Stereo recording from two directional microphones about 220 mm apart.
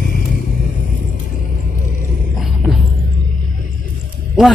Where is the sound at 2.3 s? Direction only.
Centre (ahead or behind).